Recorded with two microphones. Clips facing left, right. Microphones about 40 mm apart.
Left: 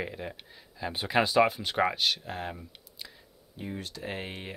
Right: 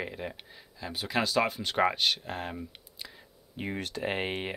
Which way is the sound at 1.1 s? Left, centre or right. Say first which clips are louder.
Left 4 dB; centre.